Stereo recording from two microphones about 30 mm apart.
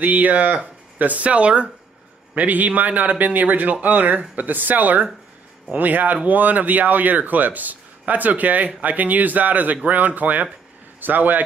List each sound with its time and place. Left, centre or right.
0.0 s speech: right
1.2 s speech: right
2.3 s speech: right
4.4 s speech: right
8.0 s speech: right
11.0 s speech: right